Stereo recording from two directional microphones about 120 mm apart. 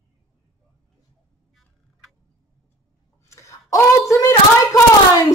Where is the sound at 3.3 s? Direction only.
25° left (ahead or behind).